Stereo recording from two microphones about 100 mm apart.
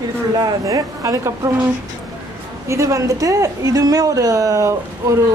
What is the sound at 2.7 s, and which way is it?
A woman's voice, 30° right (ahead or behind).